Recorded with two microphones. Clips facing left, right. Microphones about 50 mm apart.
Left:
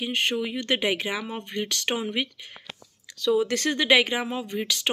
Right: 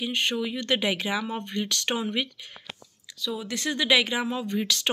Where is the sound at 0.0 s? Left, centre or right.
Left.